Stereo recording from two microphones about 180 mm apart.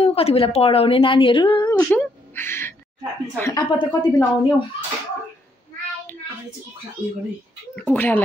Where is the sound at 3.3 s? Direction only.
15° left (ahead or behind).